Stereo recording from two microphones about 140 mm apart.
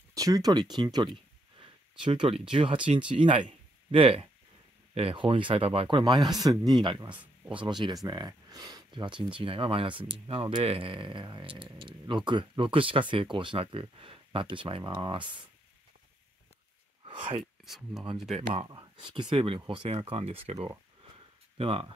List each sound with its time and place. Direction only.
0.1 s speech: 25° right (ahead or behind)
1.6 s a sound: 35° right (ahead or behind)
2.5 s speech: 40° right (ahead or behind)
17.0 s a sound: 40° right (ahead or behind)
17.6 s speech: centre (ahead or behind)
18.3 s speech: 45° right (ahead or behind)
18.7 s speech: 30° right (ahead or behind)